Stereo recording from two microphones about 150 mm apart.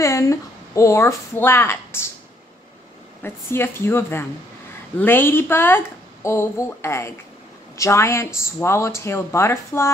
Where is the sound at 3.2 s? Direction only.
15° left (ahead or behind).